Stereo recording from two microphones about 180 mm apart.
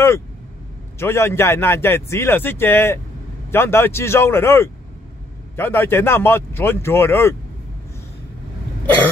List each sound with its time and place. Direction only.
0.9 s a man's voice: 15° left (ahead or behind)